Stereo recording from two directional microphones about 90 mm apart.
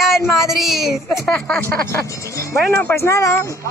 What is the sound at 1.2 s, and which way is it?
Speech, 10° left (ahead or behind).